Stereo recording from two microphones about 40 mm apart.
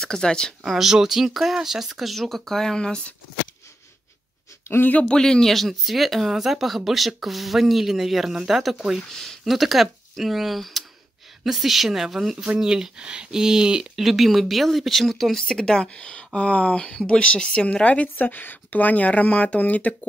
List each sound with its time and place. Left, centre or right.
0.0 s speech: centre
0.7 s speech: centre
5.0 s a man's voice: centre
5.5 s speech: centre
9.1 s speech: centre
9.4 s speech: centre
12.5 s speech: centre
13.9 s speech: centre
15.3 s speech: centre; by 16.8 s left
16.8 s speech: left
18.1 s speech: left